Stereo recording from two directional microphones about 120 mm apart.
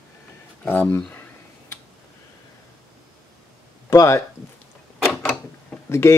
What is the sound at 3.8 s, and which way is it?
Speech, 25° left (ahead or behind).